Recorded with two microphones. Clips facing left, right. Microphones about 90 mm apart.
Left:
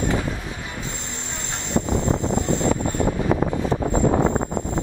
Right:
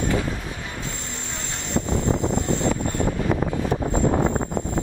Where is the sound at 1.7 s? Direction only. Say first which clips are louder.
Left 1 dB; 20° left (ahead or behind).